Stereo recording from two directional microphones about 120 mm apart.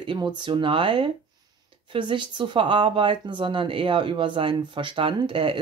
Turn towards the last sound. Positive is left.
turn(degrees=-45)  # may be behind; listen again after turning